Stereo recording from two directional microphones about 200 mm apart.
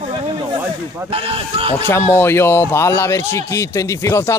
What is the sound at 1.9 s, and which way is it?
A man's voice, 10° left (ahead or behind).